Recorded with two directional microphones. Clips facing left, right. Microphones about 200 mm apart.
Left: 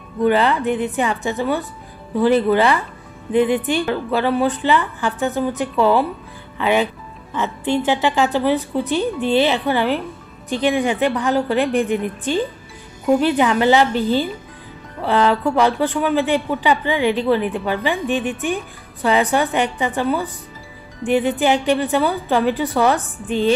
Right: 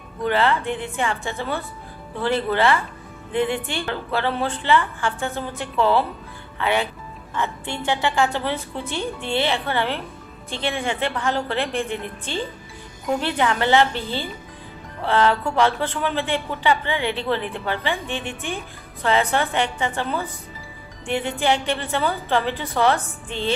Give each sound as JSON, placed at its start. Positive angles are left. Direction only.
{"t": 0.2, "sound": "a woman's voice", "side_deg": 15}